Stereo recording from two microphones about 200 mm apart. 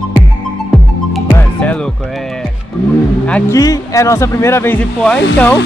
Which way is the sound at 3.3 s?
15° left (ahead or behind).